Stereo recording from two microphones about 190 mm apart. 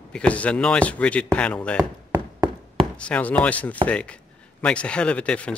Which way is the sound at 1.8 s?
20° right (ahead or behind).